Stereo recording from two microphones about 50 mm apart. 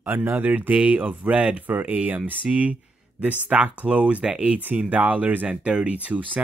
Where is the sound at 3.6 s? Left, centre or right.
Right.